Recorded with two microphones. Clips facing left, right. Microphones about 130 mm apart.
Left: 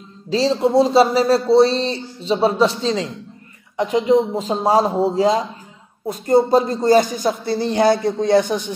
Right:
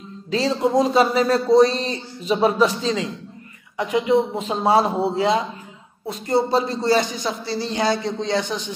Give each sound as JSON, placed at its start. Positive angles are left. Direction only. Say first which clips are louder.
{"t": 0.3, "sound": "speech", "louder": "left 3 dB", "side_deg": 35}